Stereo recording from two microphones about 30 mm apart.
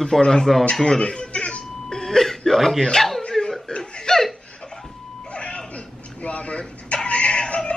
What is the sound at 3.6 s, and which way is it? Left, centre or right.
Laughter, left.